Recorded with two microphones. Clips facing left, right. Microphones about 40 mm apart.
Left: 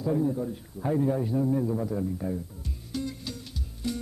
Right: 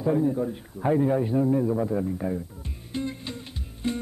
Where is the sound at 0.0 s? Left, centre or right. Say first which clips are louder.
Right 3 dB; right.